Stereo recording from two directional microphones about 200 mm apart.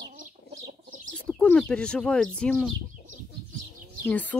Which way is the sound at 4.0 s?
10° left (ahead or behind).